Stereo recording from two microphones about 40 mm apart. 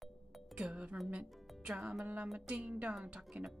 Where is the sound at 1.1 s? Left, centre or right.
Right.